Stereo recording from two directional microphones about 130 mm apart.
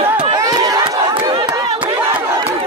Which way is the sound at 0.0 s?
40° right (ahead or behind).